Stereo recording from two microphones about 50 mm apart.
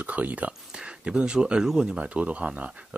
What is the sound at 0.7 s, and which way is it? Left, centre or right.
Speech, centre.